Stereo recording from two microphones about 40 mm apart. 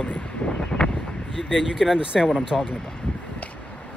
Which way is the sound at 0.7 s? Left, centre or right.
Centre.